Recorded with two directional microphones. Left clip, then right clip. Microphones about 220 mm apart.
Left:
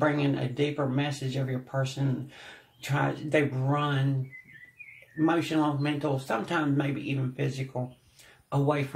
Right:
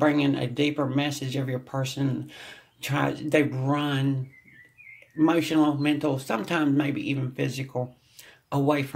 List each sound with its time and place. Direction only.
0.0 s speech: 40° right (ahead or behind)
5.2 s speech: 40° right (ahead or behind)